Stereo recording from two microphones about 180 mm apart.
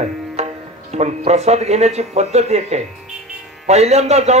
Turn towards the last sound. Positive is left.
turn(degrees=-35)  # may be behind; listen again after turning